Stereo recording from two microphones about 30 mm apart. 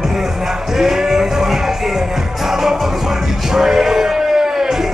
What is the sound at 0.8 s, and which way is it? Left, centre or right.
Music, centre.